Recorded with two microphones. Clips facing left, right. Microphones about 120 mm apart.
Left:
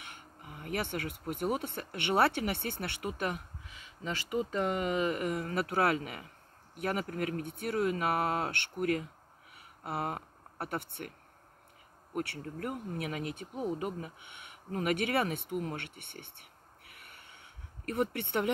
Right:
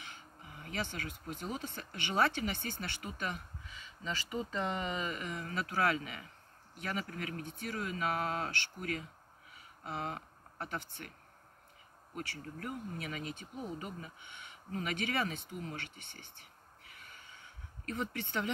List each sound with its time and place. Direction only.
0.0 s speech: 60° left (ahead or behind)
9.6 s a sound: 60° left (ahead or behind)
12.1 s speech: 60° left (ahead or behind)